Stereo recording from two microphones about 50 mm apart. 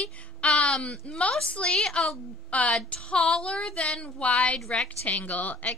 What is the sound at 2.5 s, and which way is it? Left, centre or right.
A woman's voice, left.